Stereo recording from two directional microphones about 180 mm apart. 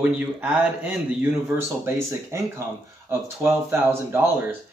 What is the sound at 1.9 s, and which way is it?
Speech, 15° right (ahead or behind).